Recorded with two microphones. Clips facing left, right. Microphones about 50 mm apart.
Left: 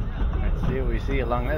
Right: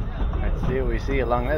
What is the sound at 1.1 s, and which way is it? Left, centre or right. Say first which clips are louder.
Speech: right 3 dB; centre.